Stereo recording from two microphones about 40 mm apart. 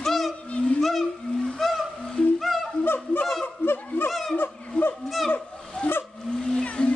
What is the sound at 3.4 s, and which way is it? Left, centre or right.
Snicker, left.